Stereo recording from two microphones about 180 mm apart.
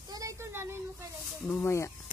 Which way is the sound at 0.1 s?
15° right (ahead or behind).